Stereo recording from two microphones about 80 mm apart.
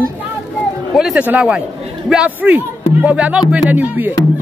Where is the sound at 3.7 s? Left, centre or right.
Right.